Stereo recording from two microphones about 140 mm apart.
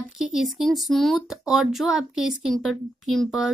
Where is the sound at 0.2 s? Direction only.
5° right (ahead or behind).